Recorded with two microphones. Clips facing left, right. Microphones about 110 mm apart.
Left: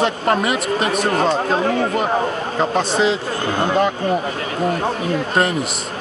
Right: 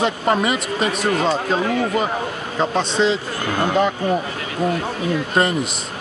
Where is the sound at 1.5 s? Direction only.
40° left (ahead or behind).